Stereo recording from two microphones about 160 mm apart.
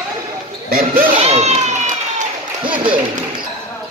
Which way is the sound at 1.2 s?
45° right (ahead or behind).